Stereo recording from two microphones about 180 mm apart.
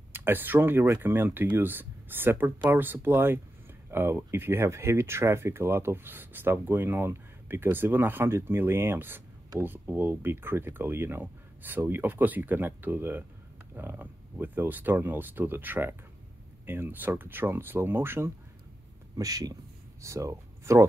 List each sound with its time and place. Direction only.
0.1 s speech: 10° right (ahead or behind)